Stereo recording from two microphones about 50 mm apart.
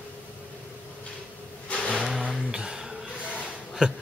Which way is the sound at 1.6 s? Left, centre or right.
Left.